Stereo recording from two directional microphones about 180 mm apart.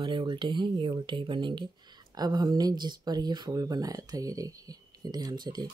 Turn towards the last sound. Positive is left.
turn(degrees=-25)  # may be behind; listen again after turning